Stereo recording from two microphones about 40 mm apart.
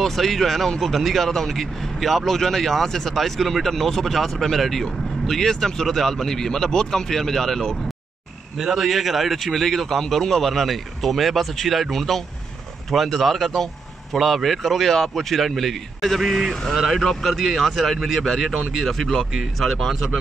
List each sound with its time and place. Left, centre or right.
0.0 s a man's voice: centre
8.5 s a man's voice: centre